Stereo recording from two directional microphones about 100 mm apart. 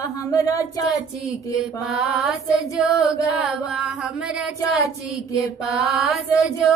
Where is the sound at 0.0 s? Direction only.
35° left (ahead or behind).